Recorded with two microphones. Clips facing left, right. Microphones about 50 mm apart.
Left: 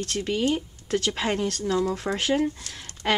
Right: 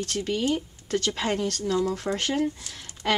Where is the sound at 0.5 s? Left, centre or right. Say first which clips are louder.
Left 1 dB; centre.